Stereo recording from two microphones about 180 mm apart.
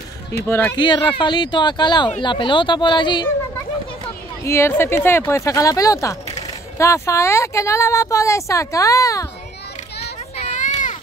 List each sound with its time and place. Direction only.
0.5 s speech: 10° left (ahead or behind)
0.7 s speech: 25° left (ahead or behind)
4.5 s speech: 15° left (ahead or behind)
10.3 s a sound: 40° left (ahead or behind)